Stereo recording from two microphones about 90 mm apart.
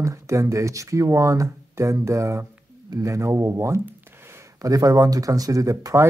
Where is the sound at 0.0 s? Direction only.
35° right (ahead or behind).